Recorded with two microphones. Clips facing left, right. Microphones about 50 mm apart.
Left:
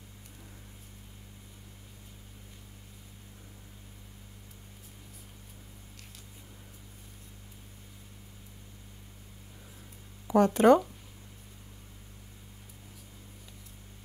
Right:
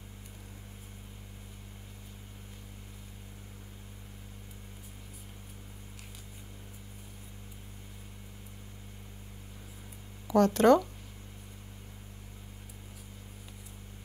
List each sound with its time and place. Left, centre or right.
10.2 s speech: centre